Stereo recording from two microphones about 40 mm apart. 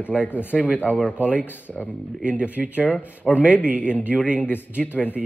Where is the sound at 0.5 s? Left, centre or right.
Right.